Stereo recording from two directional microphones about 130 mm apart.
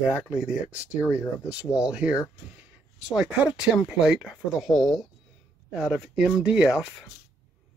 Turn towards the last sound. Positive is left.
turn(degrees=-5)  # may be behind; listen again after turning